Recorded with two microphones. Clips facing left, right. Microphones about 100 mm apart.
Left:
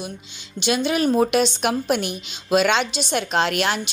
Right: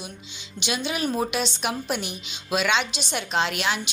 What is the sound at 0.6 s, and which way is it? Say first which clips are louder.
A woman's voice: left 7 dB; 50° left (ahead or behind).